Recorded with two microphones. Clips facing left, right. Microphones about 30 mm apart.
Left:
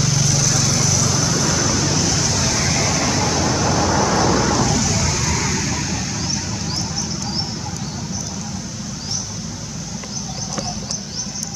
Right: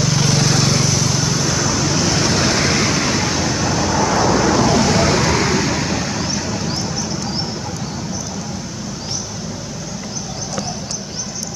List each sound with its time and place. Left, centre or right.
0.1 s vehicle: right
1.1 s vehicle: centre
2.0 s vehicle: right
2.2 s vehicle: right; by 4.6 s centre
4.6 s vehicle: right; by 6.9 s centre